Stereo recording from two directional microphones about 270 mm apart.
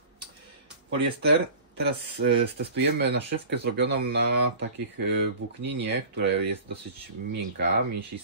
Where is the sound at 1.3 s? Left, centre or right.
Right.